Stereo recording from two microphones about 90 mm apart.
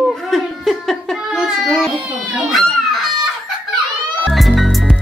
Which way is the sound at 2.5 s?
Centre (ahead or behind).